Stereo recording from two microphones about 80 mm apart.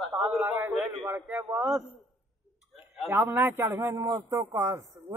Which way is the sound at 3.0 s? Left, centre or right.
Right.